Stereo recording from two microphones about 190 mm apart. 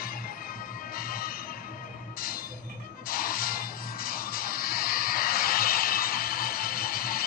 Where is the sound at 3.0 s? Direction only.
50° left (ahead or behind).